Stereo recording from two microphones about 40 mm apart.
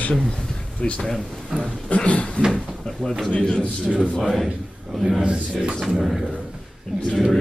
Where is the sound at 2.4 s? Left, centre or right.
Left.